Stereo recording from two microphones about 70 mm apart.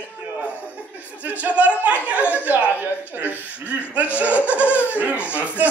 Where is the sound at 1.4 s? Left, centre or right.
Right.